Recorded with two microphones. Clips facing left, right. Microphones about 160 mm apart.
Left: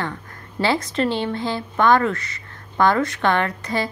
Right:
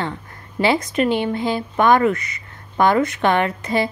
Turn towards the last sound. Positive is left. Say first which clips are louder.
# right 3 dB
turn(degrees=-20)  # may be behind; listen again after turning